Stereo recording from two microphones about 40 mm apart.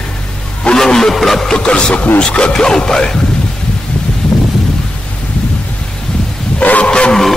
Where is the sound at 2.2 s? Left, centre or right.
Left.